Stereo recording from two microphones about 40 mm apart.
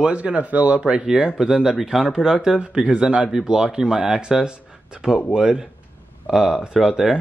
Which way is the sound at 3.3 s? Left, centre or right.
Centre.